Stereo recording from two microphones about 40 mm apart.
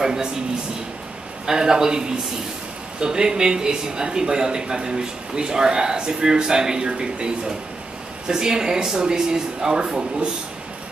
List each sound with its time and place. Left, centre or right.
0.0 s speech: centre
1.4 s a man's voice: centre
8.3 s speech: centre